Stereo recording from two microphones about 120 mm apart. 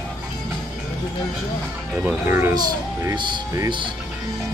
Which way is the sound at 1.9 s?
15° right (ahead or behind).